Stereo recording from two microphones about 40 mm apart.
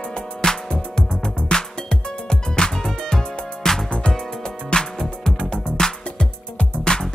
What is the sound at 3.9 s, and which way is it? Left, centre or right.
Music, left.